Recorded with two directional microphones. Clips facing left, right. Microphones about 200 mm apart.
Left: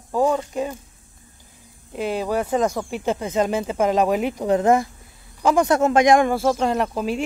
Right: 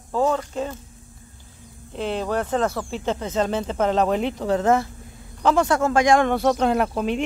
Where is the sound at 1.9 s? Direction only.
10° left (ahead or behind).